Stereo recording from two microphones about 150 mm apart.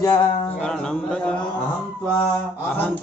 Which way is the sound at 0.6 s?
5° left (ahead or behind).